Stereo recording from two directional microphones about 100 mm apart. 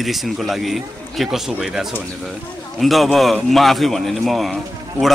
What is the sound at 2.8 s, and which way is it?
A man's voice, centre (ahead or behind).